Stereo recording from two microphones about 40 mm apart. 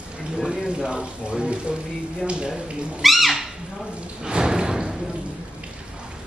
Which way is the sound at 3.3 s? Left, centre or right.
Centre.